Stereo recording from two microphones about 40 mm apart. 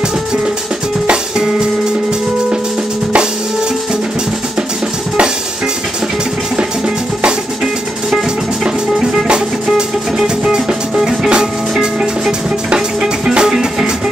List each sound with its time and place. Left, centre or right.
1.0 s music: right
10.1 s music: centre